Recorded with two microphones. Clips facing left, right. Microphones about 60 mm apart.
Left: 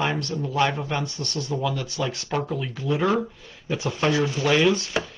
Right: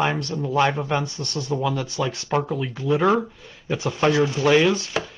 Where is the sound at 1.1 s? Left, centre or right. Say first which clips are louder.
Right 2 dB; right.